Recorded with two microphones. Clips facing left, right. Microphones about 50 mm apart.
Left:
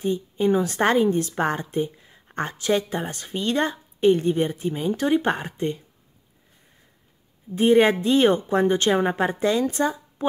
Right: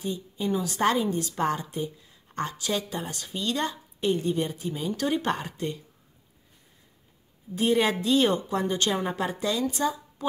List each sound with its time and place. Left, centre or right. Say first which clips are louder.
0.0 s speech: left 8 dB; left
7.5 s speech: left 7 dB; left